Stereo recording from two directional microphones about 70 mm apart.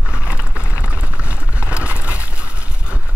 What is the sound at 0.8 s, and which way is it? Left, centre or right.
Clip-clop, centre.